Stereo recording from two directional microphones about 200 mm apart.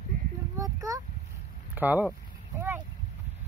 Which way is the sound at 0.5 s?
15° right (ahead or behind).